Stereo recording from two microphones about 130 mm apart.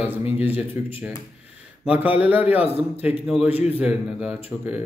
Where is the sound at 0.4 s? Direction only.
15° right (ahead or behind).